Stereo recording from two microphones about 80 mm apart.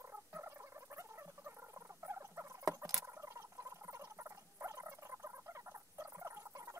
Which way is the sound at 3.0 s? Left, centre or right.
Right.